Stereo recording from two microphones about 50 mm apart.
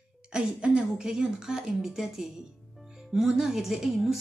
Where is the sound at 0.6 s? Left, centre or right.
Centre.